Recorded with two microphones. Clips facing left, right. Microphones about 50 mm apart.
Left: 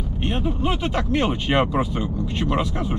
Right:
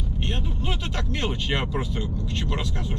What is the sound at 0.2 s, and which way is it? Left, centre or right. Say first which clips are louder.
Speech: left 8 dB; centre.